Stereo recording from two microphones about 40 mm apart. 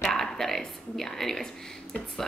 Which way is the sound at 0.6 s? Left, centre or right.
Centre.